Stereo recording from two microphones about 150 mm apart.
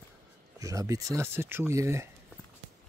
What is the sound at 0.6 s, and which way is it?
Speech, 20° right (ahead or behind).